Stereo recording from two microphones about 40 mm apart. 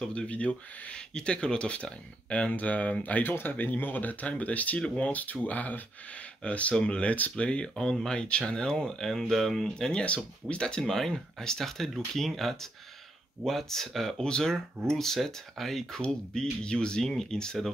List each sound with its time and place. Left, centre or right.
0.0 s speech: left
4.7 s speech: left
5.1 s speech: left
6.7 s speech: left
7.3 s speech: left
10.0 s speech: left
10.8 s speech: centre
16.0 s speech: left